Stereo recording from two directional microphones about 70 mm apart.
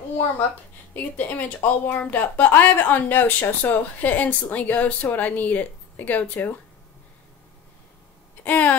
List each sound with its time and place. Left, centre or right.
0.9 s a woman's voice: left
8.5 s a woman's voice: left